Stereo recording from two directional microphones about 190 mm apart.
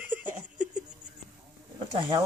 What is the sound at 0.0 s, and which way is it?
Laughter, 10° right (ahead or behind).